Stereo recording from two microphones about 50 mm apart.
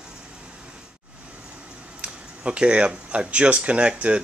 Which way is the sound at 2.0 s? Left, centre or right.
Right.